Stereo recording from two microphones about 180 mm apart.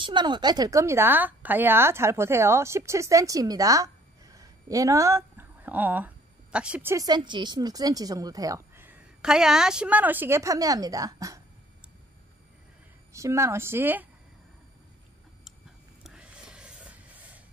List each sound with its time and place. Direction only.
0.0 s a woman's voice: 25° right (ahead or behind)
13.1 s a woman's voice: 15° right (ahead or behind)
16.0 s a sound: 5° right (ahead or behind)